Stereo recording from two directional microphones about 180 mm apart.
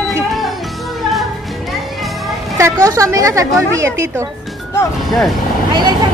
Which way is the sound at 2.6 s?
15° right (ahead or behind).